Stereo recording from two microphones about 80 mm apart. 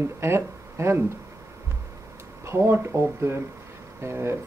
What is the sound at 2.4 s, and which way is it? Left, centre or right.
Speech, right.